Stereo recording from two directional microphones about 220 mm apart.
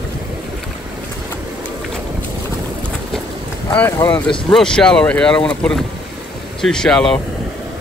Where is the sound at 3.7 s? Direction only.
10° left (ahead or behind).